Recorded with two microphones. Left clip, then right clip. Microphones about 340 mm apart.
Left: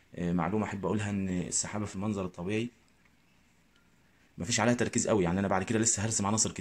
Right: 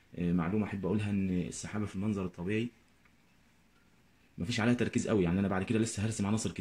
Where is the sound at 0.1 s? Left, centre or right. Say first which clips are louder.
Left 3 dB; centre.